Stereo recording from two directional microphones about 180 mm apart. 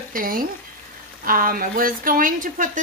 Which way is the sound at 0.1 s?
50° right (ahead or behind).